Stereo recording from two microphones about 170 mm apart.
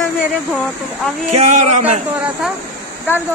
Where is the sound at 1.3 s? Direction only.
40° right (ahead or behind).